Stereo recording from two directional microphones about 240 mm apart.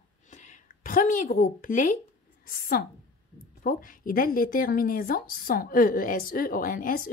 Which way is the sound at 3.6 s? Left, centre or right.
Left.